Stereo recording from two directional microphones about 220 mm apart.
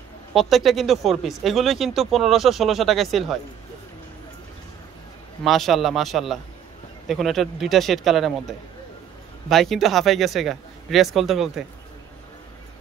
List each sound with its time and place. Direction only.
0.3 s speech: centre (ahead or behind)
5.4 s speech: centre (ahead or behind)